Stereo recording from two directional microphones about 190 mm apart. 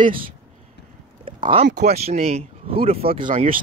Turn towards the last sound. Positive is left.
turn(degrees=-30)  # may be behind; listen again after turning